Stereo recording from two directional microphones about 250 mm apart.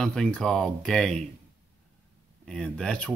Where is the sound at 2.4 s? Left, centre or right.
Centre.